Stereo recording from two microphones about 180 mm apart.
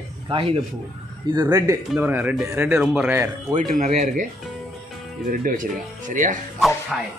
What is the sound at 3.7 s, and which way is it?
Speech, 40° right (ahead or behind).